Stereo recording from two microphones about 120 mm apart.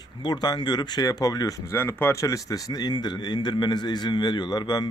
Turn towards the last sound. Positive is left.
turn(degrees=35)  # may be behind; listen again after turning